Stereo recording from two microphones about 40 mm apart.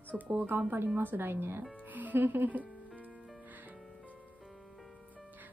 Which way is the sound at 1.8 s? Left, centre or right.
Right.